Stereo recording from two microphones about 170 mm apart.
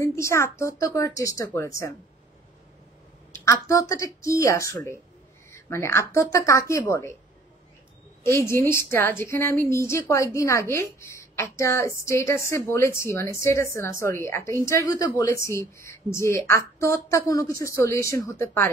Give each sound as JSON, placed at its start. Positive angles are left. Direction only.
{"t": 0.0, "sound": "a woman's voice", "side_deg": 15}
{"t": 3.3, "sound": "a woman's voice", "side_deg": 15}
{"t": 8.2, "sound": "a woman's voice", "side_deg": 15}